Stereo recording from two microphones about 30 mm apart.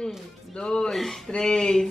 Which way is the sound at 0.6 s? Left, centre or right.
Left.